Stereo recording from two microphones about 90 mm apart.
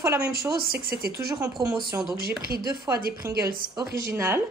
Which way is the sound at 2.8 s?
35° right (ahead or behind).